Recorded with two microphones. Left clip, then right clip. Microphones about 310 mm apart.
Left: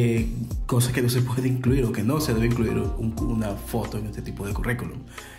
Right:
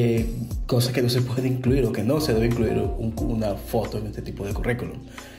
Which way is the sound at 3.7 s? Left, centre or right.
Left.